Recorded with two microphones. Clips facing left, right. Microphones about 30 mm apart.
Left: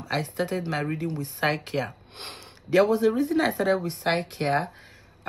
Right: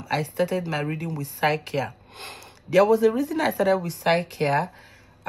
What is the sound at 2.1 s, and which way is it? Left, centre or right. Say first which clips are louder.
Speech: right 1 dB; left.